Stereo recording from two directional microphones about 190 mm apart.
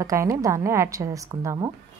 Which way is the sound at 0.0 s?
15° right (ahead or behind).